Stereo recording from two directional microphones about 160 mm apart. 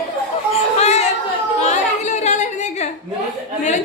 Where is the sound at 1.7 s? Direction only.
50° left (ahead or behind).